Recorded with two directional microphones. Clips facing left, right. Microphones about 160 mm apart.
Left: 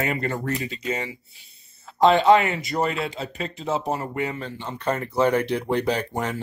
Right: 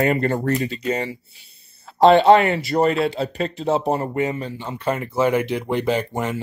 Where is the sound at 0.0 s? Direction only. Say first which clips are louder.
Right 7 dB; 35° right (ahead or behind).